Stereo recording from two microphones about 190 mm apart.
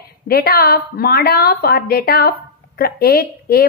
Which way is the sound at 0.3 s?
50° left (ahead or behind).